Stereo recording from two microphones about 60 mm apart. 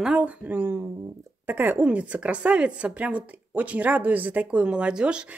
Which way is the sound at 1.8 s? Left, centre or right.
Right.